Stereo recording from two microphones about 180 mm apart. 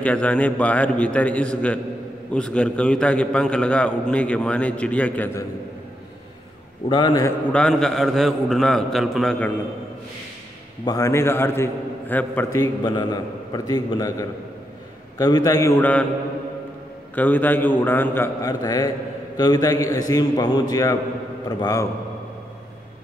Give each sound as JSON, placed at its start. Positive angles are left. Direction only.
{"t": 0.0, "sound": "a man's voice", "side_deg": 5}
{"t": 6.9, "sound": "a man's voice", "side_deg": 25}
{"t": 7.5, "sound": "a man's voice", "side_deg": 5}
{"t": 10.9, "sound": "a man's voice", "side_deg": 15}
{"t": 12.8, "sound": "a man's voice", "side_deg": 25}
{"t": 17.1, "sound": "a man's voice", "side_deg": 10}